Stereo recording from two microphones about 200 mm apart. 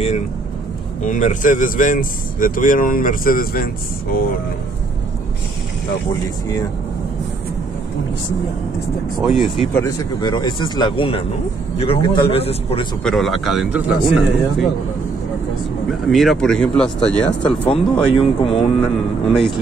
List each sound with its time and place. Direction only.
1.0 s speech: 40° left (ahead or behind)
9.2 s a man's voice: centre (ahead or behind)
9.8 s speech: 20° left (ahead or behind)
13.0 s a man's voice: centre (ahead or behind)
15.9 s a man's voice: centre (ahead or behind)
17.6 s speech: 25° left (ahead or behind)
19.3 s a man's voice: centre (ahead or behind)